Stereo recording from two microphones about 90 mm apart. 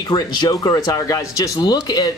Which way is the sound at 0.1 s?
50° left (ahead or behind).